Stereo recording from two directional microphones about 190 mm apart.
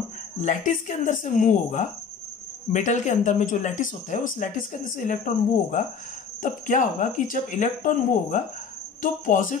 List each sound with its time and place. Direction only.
0.4 s speech: 40° left (ahead or behind)